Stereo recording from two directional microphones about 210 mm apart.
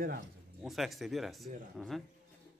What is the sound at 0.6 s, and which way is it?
Speech, centre (ahead or behind).